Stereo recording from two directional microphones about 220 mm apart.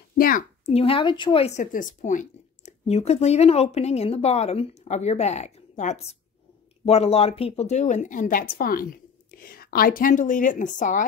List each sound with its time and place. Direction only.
0.2 s a woman's voice: 40° left (ahead or behind)